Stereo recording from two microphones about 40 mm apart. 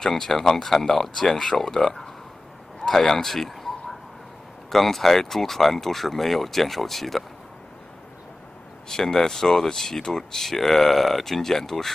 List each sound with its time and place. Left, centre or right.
0.0 s speech: centre
8.8 s speech: centre